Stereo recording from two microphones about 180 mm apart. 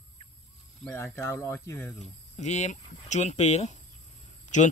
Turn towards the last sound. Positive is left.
turn(degrees=40)  # may be behind; listen again after turning